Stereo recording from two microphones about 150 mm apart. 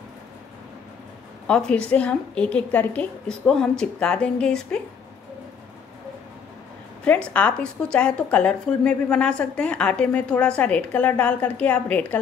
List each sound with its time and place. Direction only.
1.5 s a woman's voice: 5° left (ahead or behind)
7.1 s a woman's voice: 10° left (ahead or behind)